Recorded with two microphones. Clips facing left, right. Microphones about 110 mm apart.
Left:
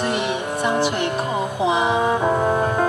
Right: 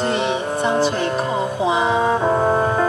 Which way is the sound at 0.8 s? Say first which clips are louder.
Right 2 dB; 15° left (ahead or behind).